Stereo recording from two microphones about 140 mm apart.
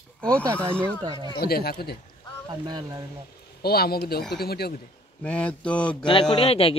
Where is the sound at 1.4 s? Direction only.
90° left.